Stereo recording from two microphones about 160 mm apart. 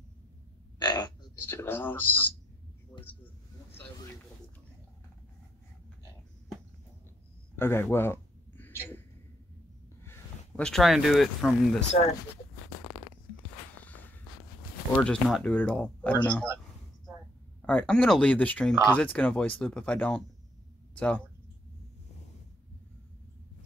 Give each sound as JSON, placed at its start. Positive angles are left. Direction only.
{"t": 0.7, "sound": "frog", "side_deg": 25}
{"t": 1.4, "sound": "speech", "side_deg": 15}
{"t": 7.5, "sound": "a sound", "side_deg": 15}
{"t": 10.0, "sound": "speech", "side_deg": 5}
{"t": 15.0, "sound": "speech", "side_deg": 5}
{"t": 17.6, "sound": "speech", "side_deg": 10}